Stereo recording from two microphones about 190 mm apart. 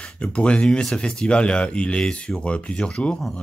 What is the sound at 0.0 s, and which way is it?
Speech, 5° left (ahead or behind).